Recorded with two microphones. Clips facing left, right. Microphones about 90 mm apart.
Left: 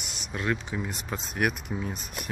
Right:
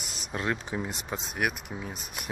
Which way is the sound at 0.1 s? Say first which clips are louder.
Left 1 dB; 30° right (ahead or behind).